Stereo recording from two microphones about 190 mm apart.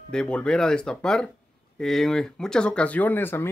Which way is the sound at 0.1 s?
5° left (ahead or behind).